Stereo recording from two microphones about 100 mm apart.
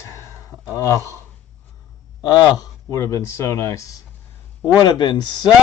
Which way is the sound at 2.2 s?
45° left (ahead or behind).